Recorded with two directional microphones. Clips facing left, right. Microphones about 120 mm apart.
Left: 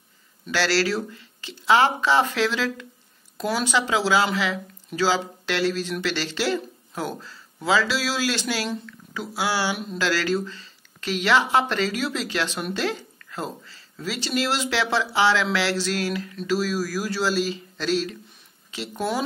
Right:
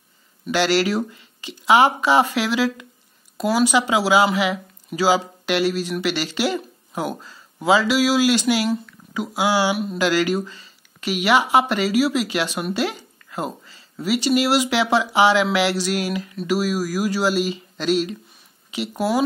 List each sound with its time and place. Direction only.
0.5 s speech: 15° right (ahead or behind)